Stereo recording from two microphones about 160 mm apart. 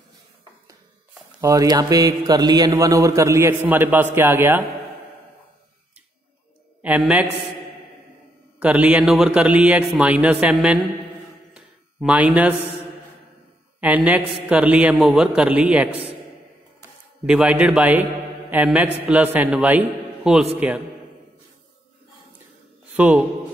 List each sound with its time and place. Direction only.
1.4 s a man's voice: 20° right (ahead or behind)
6.8 s a man's voice: 10° right (ahead or behind)
8.5 s a man's voice: 10° right (ahead or behind)
11.5 s a sound: 5° right (ahead or behind)
13.7 s a man's voice: 10° right (ahead or behind)
17.3 s a man's voice: 10° right (ahead or behind)
22.9 s a man's voice: 10° right (ahead or behind)